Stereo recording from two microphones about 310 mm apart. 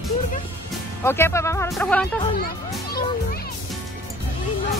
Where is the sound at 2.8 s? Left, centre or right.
Left.